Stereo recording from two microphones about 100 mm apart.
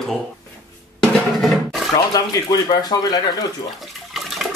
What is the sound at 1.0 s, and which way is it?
Music, centre (ahead or behind).